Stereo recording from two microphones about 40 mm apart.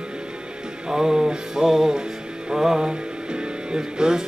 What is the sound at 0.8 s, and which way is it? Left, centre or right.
Music, centre.